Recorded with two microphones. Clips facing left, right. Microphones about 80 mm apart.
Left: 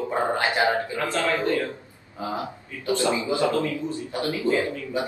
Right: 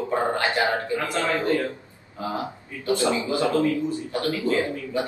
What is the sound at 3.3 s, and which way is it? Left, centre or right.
Speech, right.